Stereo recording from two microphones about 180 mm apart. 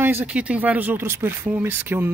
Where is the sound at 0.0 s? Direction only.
10° right (ahead or behind).